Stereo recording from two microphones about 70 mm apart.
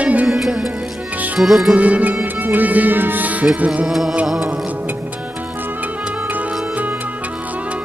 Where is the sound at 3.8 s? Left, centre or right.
Centre.